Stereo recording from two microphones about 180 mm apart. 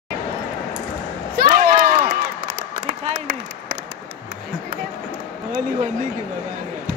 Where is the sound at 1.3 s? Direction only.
50° right (ahead or behind).